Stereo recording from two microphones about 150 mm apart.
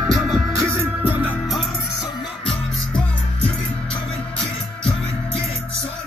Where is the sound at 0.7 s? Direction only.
15° right (ahead or behind).